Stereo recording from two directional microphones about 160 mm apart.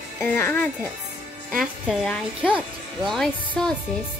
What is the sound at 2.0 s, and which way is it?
Speech, 10° left (ahead or behind).